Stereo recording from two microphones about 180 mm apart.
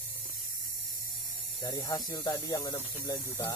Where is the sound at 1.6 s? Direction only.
20° left (ahead or behind).